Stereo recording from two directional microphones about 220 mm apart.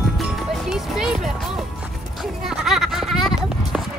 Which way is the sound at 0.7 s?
Centre (ahead or behind).